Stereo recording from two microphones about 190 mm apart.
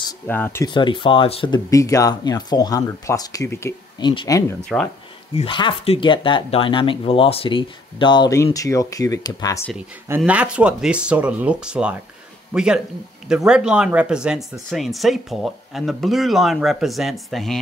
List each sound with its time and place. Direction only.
0.3 s speech: 10° left (ahead or behind)
0.7 s speech: 25° left (ahead or behind)
5.3 s speech: 30° left (ahead or behind)
9.8 s speech: 10° right (ahead or behind)